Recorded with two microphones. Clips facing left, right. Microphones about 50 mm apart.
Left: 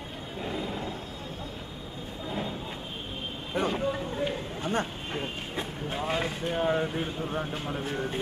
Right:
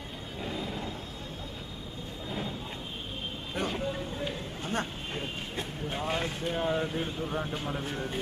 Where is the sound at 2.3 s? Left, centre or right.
Centre.